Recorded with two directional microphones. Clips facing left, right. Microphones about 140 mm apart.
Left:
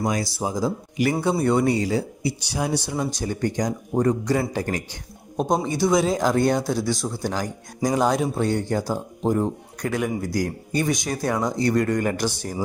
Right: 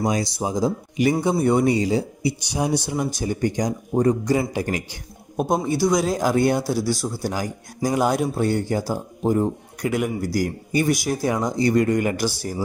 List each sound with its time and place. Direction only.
0.0 s a man's voice: 20° right (ahead or behind); by 12.5 s 5° right (ahead or behind)